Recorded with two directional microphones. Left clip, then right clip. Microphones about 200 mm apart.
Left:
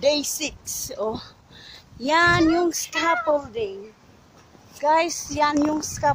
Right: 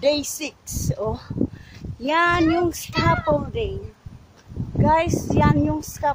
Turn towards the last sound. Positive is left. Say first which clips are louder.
# left 1 dB
turn(degrees=15)  # may be behind; listen again after turning